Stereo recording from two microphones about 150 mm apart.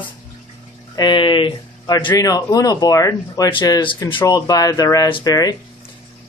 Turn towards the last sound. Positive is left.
turn(degrees=25)  # may be behind; listen again after turning